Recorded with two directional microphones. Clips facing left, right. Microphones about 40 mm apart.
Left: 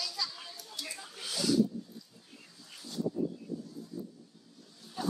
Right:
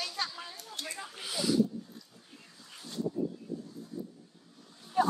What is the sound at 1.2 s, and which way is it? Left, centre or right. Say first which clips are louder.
Speech: even; centre.